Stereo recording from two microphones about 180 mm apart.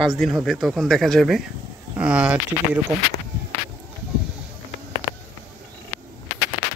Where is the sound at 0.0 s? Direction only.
Centre (ahead or behind).